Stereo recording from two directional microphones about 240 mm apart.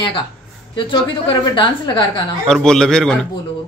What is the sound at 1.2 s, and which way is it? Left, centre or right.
Speech, centre.